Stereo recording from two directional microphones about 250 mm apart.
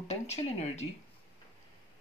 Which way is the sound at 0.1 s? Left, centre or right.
Left.